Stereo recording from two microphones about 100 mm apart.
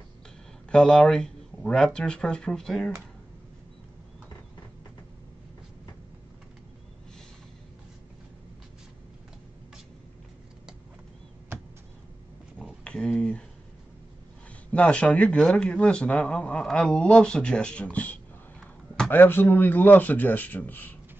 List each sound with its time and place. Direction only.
0.7 s speech: 5° left (ahead or behind)
12.8 s speech: 10° left (ahead or behind)
14.7 s speech: 10° left (ahead or behind)